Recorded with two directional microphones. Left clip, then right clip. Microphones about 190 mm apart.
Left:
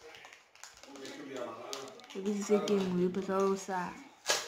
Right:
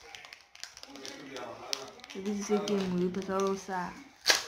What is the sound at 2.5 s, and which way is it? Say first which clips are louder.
Speech: left 1 dB; centre (ahead or behind).